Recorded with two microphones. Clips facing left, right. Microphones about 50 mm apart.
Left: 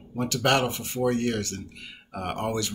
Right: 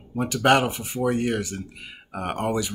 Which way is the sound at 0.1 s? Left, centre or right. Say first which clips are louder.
Right 4 dB; centre.